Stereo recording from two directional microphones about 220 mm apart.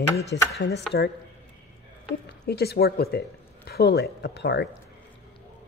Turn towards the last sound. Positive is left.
turn(degrees=50)  # may be behind; listen again after turning